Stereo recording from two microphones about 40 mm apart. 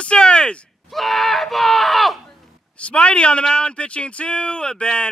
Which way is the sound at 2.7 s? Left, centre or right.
Left.